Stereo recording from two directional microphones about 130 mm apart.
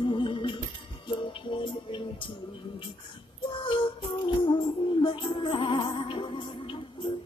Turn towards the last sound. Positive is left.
turn(degrees=40)  # may be behind; listen again after turning